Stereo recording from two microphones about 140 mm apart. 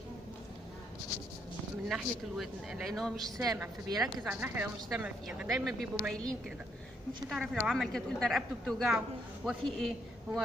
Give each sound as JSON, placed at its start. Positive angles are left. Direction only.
{"t": 1.9, "sound": "a woman's voice", "side_deg": 0}
{"t": 3.3, "sound": "a woman's voice", "side_deg": -15}